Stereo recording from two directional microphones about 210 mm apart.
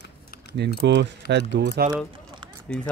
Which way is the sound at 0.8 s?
55° right (ahead or behind).